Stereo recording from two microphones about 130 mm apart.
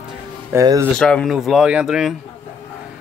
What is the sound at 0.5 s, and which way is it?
Speech, 20° right (ahead or behind).